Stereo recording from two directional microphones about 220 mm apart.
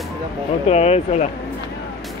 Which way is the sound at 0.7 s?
30° left (ahead or behind).